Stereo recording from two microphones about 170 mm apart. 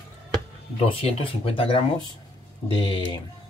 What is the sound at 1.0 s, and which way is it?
Speech, 35° left (ahead or behind).